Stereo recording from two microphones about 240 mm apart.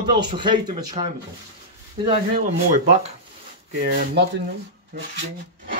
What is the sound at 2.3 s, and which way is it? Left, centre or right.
Speech, right.